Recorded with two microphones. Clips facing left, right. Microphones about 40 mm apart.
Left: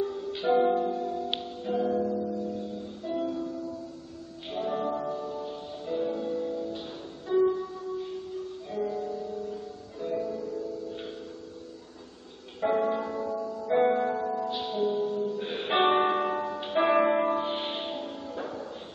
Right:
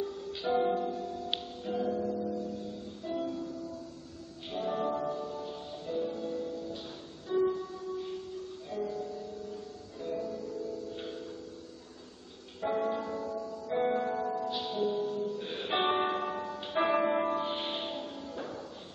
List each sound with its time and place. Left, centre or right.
0.0 s music: left
5.9 s music: left
12.5 s music: left
13.9 s music: centre